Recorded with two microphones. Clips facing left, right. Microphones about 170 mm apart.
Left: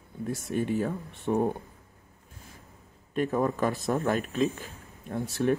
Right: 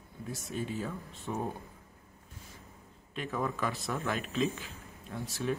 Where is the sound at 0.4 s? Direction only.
60° left (ahead or behind).